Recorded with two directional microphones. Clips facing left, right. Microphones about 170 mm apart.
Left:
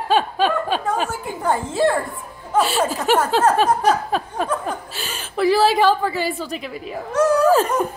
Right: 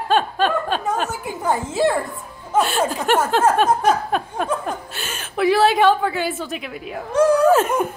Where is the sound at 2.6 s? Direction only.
Centre (ahead or behind).